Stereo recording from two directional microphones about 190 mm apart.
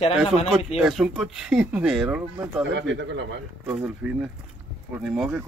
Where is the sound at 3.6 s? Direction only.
5° right (ahead or behind).